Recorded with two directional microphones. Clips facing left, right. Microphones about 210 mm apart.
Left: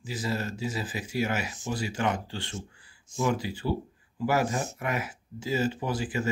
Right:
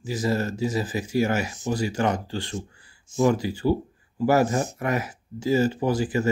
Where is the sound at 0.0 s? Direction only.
45° right (ahead or behind).